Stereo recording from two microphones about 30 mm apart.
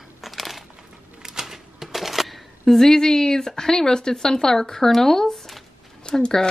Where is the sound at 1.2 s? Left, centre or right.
Centre.